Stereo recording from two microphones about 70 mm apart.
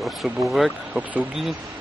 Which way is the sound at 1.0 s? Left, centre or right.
Right.